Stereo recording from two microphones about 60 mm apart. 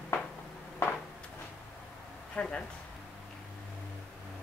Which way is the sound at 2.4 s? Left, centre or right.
Left.